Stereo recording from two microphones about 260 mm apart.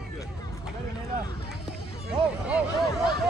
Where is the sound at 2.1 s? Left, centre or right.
Centre.